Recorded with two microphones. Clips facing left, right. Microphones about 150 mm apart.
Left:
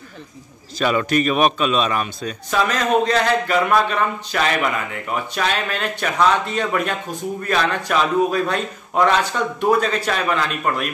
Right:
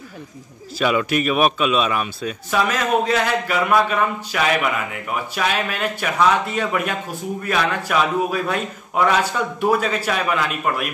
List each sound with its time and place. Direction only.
0.7 s speech: 5° right (ahead or behind)